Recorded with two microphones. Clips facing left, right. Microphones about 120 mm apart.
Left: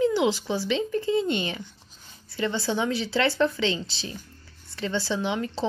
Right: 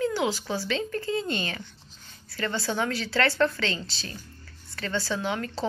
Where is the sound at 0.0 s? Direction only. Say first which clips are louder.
Left 4 dB; 20° left (ahead or behind).